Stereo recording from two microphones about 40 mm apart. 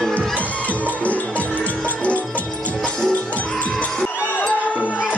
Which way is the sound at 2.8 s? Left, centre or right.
Centre.